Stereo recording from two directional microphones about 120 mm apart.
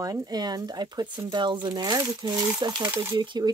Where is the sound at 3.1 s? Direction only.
40° right (ahead or behind).